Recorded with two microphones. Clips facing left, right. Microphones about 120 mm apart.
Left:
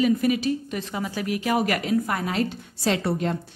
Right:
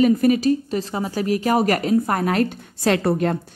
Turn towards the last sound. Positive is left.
turn(degrees=-50)  # may be behind; listen again after turning